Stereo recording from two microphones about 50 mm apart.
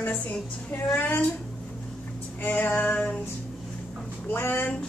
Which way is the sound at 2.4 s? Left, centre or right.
Left.